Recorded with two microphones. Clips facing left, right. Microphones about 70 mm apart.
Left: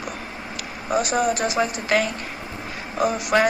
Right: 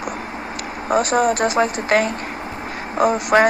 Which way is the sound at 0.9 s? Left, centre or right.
Right.